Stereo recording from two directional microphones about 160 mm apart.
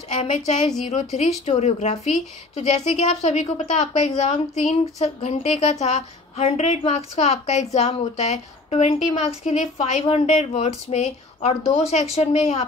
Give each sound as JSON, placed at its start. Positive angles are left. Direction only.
{"t": 0.1, "sound": "a woman's voice", "side_deg": 45}